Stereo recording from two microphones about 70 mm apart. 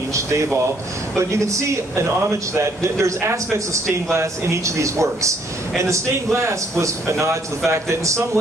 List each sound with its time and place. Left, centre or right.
0.1 s a man's voice: right